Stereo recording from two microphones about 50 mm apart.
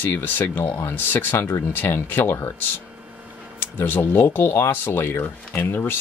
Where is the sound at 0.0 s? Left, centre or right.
Left.